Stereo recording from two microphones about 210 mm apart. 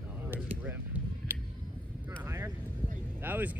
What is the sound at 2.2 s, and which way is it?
Vehicle, 10° right (ahead or behind).